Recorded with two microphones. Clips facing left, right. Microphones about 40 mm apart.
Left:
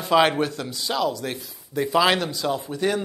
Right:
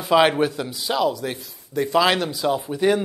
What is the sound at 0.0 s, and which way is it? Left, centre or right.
Speech, centre.